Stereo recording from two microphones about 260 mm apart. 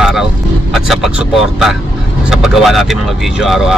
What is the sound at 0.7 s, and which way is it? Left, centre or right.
Speech, centre.